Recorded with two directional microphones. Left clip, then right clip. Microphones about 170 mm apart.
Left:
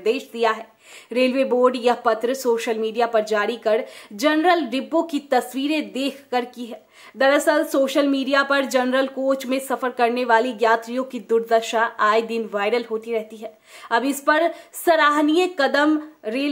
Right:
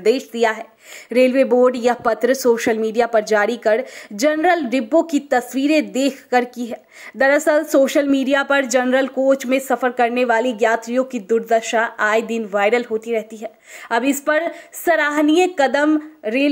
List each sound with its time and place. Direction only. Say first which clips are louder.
0.0 s speech: right 4 dB; 25° right (ahead or behind)